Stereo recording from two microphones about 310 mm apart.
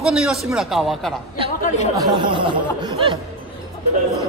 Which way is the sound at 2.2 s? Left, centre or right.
Centre.